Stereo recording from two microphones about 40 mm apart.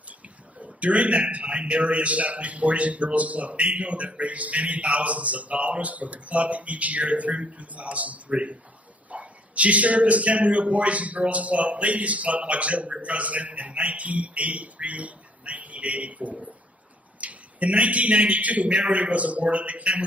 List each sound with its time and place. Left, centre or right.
0.6 s a man's voice: right